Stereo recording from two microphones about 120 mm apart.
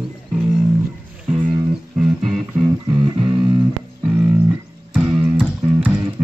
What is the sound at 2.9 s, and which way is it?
Music, 45° right (ahead or behind).